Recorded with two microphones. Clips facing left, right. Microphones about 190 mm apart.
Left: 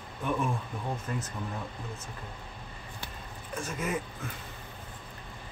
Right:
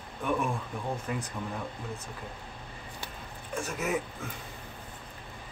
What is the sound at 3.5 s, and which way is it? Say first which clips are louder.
Speech: right 2 dB; 10° right (ahead or behind).